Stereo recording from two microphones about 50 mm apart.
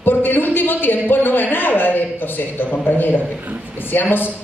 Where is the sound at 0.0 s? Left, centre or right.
Left.